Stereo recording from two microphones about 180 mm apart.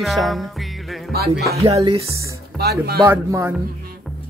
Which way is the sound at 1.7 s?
20° right (ahead or behind).